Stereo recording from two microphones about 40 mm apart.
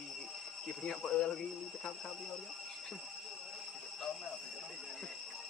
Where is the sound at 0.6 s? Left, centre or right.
Centre.